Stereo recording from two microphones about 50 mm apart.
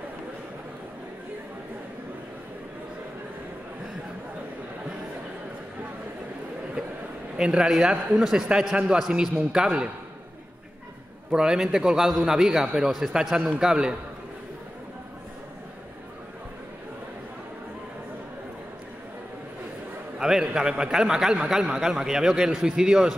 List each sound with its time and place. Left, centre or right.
7.3 s a man's voice: centre
9.5 s a man's voice: centre
11.3 s a man's voice: centre
20.2 s a man's voice: centre